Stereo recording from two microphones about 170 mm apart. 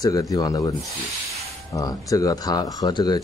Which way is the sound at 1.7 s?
20° left (ahead or behind).